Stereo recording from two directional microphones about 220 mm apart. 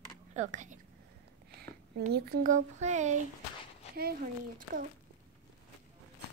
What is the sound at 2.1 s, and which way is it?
Speech, 45° right (ahead or behind).